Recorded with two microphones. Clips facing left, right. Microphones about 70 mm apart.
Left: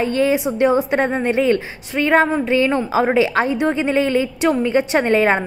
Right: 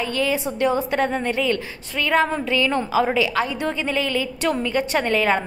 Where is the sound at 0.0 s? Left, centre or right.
Left.